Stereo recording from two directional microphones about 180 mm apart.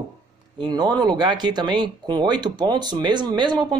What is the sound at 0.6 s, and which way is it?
Speech, 25° right (ahead or behind).